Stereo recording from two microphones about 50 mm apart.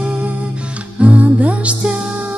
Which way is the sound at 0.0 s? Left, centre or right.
Right.